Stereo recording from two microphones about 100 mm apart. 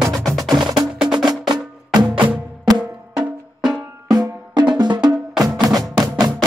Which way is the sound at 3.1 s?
5° right (ahead or behind).